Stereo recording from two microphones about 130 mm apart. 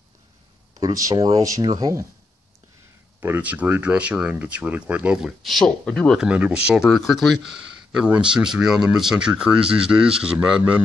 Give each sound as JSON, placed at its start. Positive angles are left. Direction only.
{"t": 0.7, "sound": "speech", "side_deg": -30}
{"t": 3.2, "sound": "speech", "side_deg": -15}
{"t": 6.1, "sound": "speech", "side_deg": -10}